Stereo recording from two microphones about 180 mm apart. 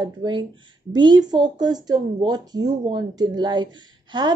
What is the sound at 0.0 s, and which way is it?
A woman's voice, 25° right (ahead or behind).